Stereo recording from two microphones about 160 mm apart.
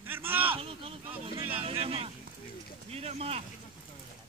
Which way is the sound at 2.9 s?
40° right (ahead or behind).